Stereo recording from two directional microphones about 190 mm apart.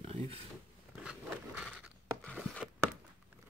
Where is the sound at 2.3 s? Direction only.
5° left (ahead or behind).